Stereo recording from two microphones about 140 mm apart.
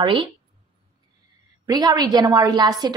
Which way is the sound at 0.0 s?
35° right (ahead or behind).